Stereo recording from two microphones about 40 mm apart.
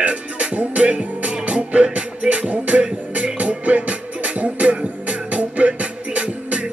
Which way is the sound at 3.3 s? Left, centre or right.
Right.